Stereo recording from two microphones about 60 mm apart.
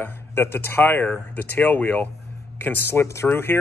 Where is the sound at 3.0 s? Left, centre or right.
Left.